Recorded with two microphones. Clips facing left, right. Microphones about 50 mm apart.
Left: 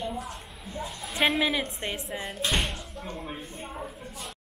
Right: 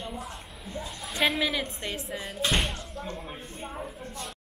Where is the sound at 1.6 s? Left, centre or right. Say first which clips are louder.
Left 1 dB; left.